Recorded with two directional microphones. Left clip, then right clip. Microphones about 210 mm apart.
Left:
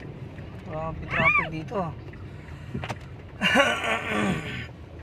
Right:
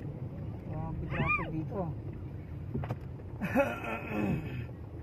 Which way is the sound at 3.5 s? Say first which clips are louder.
Left 10 dB; 50° left (ahead or behind).